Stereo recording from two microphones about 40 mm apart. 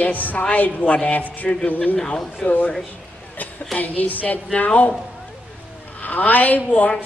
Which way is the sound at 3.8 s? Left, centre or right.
Left.